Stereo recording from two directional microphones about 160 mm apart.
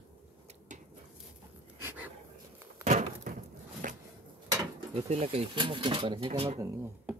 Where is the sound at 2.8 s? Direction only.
50° right (ahead or behind).